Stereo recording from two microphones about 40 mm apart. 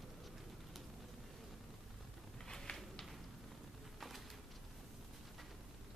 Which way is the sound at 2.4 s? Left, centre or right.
Centre.